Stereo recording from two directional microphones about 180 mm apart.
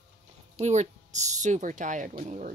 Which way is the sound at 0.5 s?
40° right (ahead or behind).